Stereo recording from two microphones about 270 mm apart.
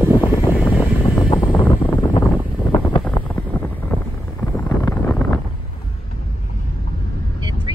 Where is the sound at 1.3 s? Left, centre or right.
Centre.